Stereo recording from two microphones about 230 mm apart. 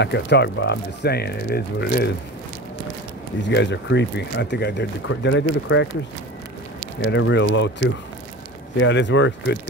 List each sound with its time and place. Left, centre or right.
0.0 s speech: left
3.4 s speech: left
7.0 s speech: left